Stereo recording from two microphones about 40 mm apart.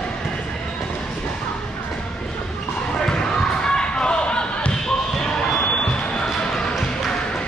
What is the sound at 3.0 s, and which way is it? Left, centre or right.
Basketball bounce, left.